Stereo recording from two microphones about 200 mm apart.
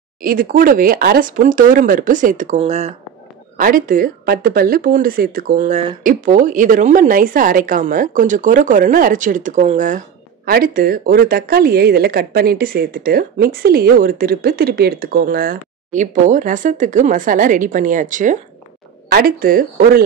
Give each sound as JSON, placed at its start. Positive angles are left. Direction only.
{"t": 0.2, "sound": "speech", "side_deg": -45}
{"t": 3.5, "sound": "speech", "side_deg": -45}